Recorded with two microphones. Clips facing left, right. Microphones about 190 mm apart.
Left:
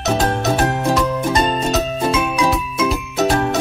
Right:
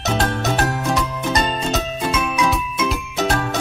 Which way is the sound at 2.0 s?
30° left (ahead or behind).